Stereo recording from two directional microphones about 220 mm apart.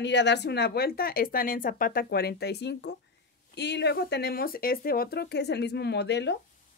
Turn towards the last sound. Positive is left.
turn(degrees=50)  # may be behind; listen again after turning